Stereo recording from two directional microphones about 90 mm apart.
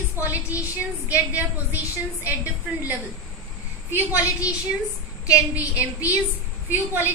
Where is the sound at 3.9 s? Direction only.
20° right (ahead or behind).